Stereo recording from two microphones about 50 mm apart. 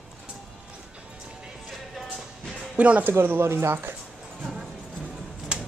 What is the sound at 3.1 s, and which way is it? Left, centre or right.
Speech, right.